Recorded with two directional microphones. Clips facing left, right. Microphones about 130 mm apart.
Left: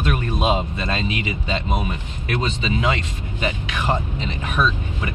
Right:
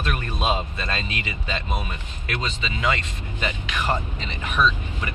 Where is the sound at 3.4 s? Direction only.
10° left (ahead or behind).